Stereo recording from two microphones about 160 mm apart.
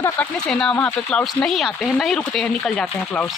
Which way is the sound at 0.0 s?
5° left (ahead or behind).